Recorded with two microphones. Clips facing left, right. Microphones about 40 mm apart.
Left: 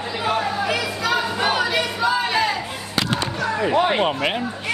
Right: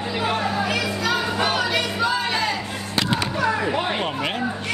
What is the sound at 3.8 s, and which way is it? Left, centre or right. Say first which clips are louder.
Speech: left 4 dB; left.